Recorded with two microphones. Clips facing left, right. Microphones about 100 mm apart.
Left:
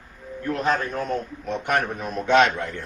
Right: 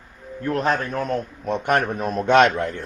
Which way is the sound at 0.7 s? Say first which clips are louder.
Left 1 dB; 45° right (ahead or behind).